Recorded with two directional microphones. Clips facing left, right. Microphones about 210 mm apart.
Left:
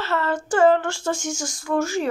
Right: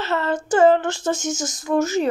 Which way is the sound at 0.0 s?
20° right (ahead or behind).